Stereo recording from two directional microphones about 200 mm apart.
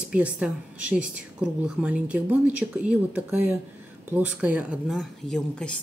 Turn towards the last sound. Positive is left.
turn(degrees=5)  # may be behind; listen again after turning